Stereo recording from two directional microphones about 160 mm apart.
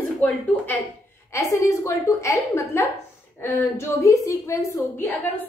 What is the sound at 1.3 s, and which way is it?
A woman's voice, 20° left (ahead or behind).